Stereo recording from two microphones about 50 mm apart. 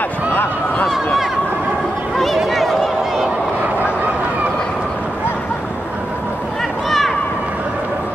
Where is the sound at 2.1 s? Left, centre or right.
Centre.